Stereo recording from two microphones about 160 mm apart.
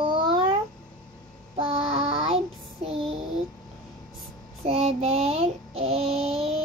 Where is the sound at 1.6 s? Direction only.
35° right (ahead or behind).